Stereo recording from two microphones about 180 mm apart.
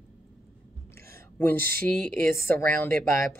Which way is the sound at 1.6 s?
55° right (ahead or behind).